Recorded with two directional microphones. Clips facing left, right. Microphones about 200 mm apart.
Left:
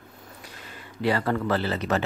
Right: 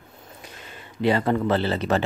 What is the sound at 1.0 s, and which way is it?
Speech, 20° right (ahead or behind).